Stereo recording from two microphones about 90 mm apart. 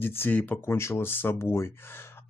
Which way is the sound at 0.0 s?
25° left (ahead or behind).